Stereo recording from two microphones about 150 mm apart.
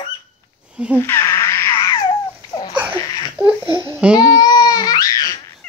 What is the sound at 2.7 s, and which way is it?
Laughter, 15° right (ahead or behind).